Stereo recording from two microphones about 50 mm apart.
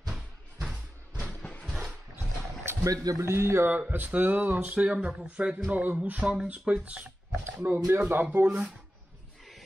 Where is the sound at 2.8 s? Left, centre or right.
Right.